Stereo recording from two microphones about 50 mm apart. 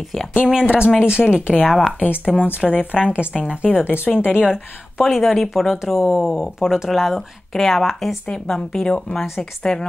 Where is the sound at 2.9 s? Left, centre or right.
Centre.